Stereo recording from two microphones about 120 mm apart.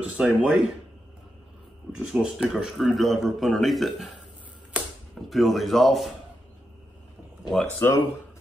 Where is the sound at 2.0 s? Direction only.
5° right (ahead or behind).